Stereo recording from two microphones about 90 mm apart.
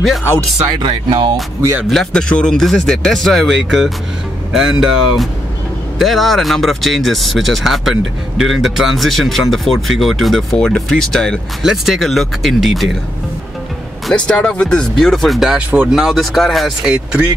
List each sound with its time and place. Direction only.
0.7 s speech: 60° right (ahead or behind)
1.9 s speech: 5° left (ahead or behind)
14.1 s speech: 10° left (ahead or behind); by 17.2 s 10° right (ahead or behind)